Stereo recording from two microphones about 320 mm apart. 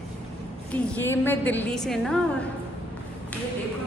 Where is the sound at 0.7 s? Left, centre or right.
Centre.